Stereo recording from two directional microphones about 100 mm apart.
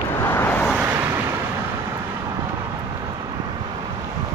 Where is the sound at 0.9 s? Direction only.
25° right (ahead or behind).